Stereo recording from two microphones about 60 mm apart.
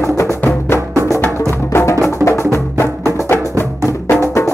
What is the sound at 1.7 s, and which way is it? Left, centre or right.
Music, left.